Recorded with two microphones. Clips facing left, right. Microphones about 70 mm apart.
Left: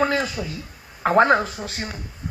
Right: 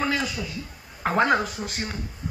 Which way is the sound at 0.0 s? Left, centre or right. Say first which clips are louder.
Left 4 dB; left.